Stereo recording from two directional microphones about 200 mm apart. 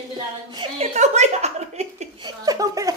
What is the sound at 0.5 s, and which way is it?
Speech, 25° right (ahead or behind).